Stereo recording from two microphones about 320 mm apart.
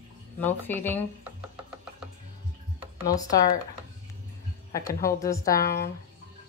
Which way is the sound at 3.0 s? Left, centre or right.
Centre.